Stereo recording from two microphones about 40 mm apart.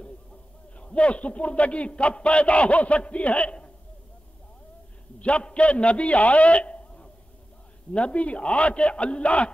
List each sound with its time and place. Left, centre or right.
0.7 s a man's voice: left
5.2 s a man's voice: left